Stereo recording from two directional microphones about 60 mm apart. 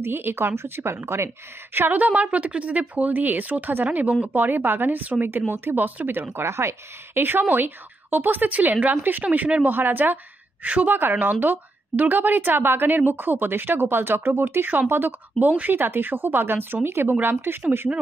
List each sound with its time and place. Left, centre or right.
0.0 s a woman's voice: right
6.3 s a woman's voice: right